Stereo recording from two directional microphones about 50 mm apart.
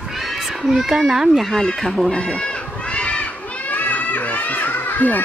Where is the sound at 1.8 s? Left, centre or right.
Centre; by 3.3 s left.